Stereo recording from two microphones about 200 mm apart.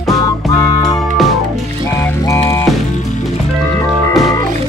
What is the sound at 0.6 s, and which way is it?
Music, 20° left (ahead or behind).